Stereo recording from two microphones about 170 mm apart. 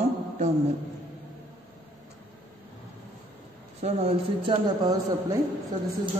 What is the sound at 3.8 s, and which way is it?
Speech, 40° right (ahead or behind).